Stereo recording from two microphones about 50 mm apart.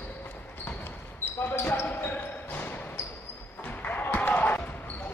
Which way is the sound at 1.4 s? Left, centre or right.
Left.